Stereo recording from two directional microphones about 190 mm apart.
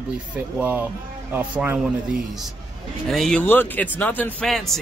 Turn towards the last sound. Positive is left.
turn(degrees=0)  # may be behind; listen again after turning